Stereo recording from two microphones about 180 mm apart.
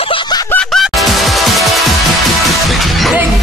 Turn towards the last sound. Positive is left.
turn(degrees=0)  # may be behind; listen again after turning